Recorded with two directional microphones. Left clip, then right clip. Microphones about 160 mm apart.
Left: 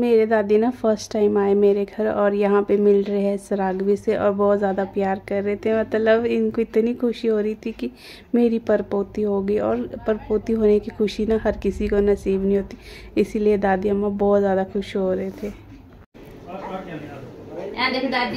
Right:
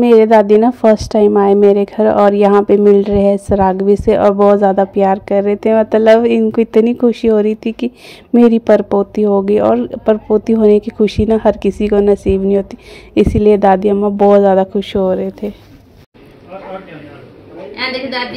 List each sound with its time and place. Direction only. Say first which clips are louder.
0.0 s speech: right 10 dB; 35° right (ahead or behind)